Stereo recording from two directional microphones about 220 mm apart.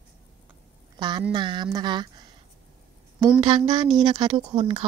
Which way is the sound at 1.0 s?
20° right (ahead or behind).